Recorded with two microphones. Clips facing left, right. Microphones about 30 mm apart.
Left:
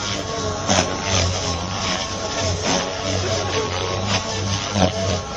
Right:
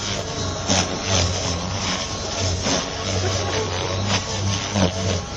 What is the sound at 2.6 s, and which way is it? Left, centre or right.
Vehicle, centre.